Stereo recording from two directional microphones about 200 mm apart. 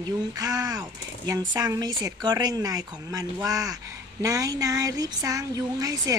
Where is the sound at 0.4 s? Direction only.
20° right (ahead or behind).